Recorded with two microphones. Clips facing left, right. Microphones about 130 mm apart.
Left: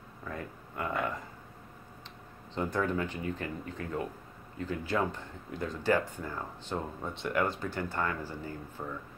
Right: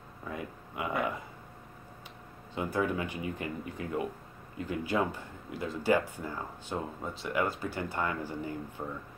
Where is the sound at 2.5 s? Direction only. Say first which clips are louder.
Even; 10° right (ahead or behind).